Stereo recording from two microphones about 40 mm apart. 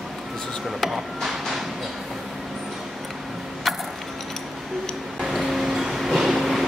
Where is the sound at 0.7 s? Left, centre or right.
Centre.